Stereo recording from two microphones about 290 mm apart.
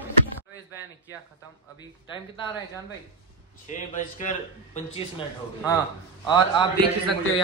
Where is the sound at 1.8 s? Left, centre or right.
Centre.